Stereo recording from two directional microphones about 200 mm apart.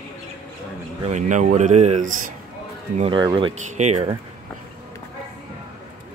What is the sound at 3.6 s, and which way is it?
Speech, 35° right (ahead or behind).